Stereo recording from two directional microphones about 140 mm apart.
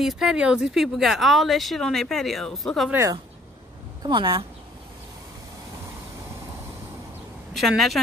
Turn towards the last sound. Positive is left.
turn(degrees=0)  # may be behind; listen again after turning